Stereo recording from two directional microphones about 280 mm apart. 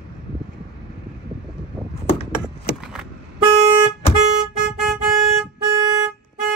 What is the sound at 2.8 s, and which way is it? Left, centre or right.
Vehicle, centre.